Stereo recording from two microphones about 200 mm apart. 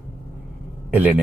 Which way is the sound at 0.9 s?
5° right (ahead or behind).